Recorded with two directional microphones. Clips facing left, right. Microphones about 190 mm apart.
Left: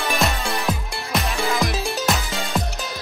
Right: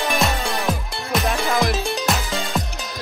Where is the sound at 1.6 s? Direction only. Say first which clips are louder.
Right 2 dB; centre (ahead or behind).